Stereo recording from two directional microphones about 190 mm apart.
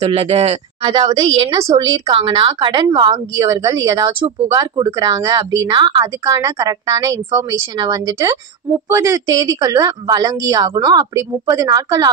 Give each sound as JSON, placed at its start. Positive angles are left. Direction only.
{"t": 0.0, "sound": "a woman's voice", "side_deg": -35}